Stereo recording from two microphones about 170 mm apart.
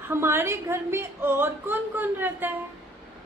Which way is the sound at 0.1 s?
15° right (ahead or behind).